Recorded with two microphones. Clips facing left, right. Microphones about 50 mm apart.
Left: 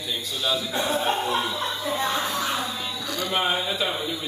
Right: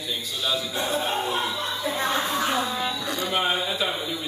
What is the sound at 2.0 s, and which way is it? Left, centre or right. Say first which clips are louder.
Speech: right 2 dB; right.